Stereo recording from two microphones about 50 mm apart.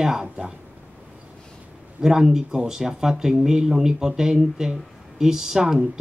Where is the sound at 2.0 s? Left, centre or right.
Centre.